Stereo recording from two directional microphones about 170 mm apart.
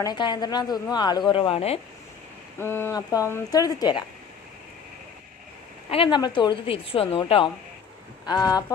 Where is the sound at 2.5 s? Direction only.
15° left (ahead or behind).